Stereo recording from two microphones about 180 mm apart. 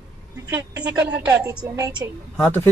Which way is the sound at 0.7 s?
10° right (ahead or behind).